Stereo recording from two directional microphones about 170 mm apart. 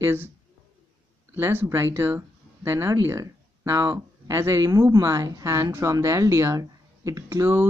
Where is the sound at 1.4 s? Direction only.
15° right (ahead or behind).